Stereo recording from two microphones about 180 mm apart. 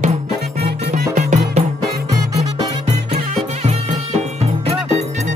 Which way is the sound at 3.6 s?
35° right (ahead or behind).